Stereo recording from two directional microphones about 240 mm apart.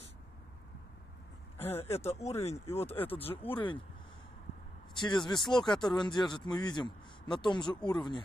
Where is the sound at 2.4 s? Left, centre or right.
Left.